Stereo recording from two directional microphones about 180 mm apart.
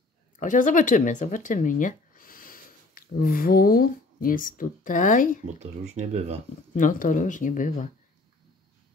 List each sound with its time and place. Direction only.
0.4 s speech: 45° left (ahead or behind)
5.6 s speech: 35° right (ahead or behind)
6.7 s speech: 45° left (ahead or behind)